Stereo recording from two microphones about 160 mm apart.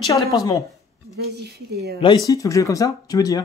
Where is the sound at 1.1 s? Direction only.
90° right.